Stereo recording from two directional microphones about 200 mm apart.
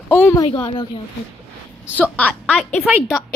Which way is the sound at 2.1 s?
5° left (ahead or behind).